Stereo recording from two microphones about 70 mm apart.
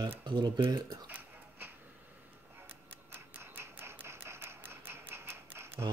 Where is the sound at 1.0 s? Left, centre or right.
Right.